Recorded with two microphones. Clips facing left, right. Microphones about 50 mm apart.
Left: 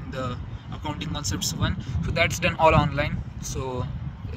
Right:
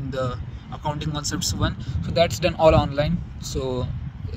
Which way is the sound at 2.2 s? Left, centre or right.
Left.